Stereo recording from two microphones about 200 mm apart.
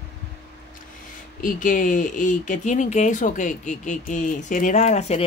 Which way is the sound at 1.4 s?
40° left (ahead or behind).